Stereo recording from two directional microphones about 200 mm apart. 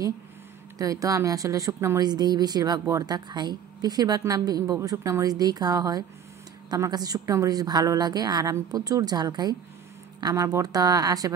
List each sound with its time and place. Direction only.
0.7 s a woman's voice: 15° right (ahead or behind)